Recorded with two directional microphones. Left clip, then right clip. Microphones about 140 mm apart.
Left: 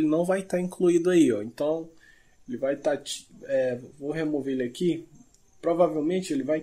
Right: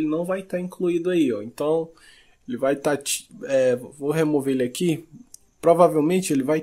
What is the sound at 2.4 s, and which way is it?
Speech, 50° right (ahead or behind).